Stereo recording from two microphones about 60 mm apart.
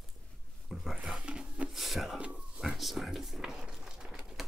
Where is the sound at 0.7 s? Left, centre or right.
Centre.